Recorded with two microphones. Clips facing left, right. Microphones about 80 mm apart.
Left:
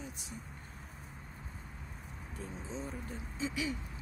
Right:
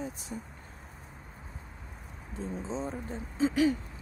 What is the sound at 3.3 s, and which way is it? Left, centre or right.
Owl, right.